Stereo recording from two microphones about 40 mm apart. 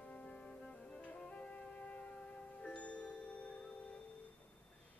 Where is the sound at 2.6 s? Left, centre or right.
Left.